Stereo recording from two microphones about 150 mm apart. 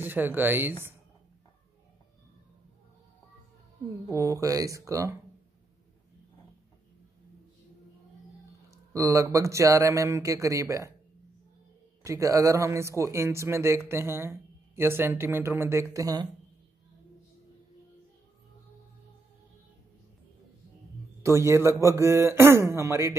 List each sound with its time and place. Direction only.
0.0 s speech: 15° right (ahead or behind)
4.1 s speech: 20° right (ahead or behind)
8.6 s speech: 20° right (ahead or behind)
12.0 s speech: 20° right (ahead or behind)
21.2 s speech: 20° right (ahead or behind)